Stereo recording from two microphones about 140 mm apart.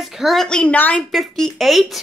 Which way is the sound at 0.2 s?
Centre (ahead or behind).